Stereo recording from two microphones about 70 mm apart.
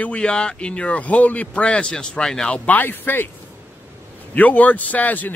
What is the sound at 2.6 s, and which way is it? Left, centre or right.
Speech, left.